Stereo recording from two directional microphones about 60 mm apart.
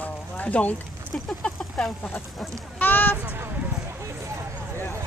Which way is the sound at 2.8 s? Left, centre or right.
Left.